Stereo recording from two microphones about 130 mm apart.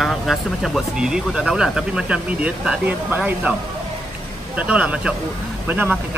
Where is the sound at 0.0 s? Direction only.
Centre (ahead or behind).